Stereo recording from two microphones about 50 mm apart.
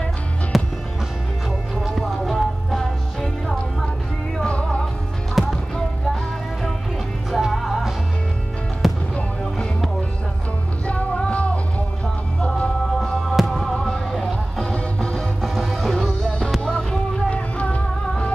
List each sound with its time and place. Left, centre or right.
0.5 s music: centre
1.8 s music: centre
4.5 s music: left
5.4 s music: centre
7.2 s music: centre
10.9 s music: left
13.4 s music: centre
14.6 s music: centre
15.1 s music: centre
17.3 s music: left